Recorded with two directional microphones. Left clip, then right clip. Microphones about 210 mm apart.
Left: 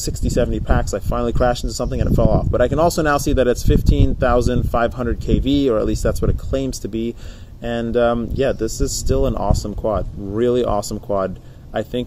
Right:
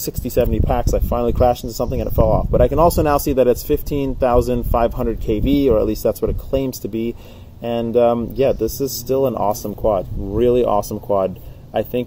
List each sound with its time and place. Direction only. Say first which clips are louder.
0.3 s speech: right 2 dB; 20° left (ahead or behind)